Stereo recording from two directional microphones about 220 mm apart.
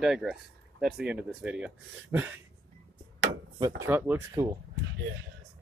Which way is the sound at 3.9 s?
10° right (ahead or behind).